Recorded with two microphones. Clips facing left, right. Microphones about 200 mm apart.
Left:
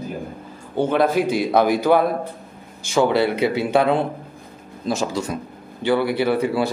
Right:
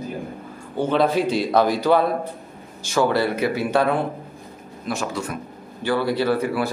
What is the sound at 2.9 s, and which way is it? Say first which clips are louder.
A man's voice: left 2 dB; 15° left (ahead or behind).